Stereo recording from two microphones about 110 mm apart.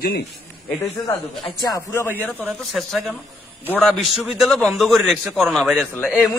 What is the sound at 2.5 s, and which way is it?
A man's voice, centre (ahead or behind).